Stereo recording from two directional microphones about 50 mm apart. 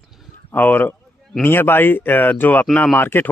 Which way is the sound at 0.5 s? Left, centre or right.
Left.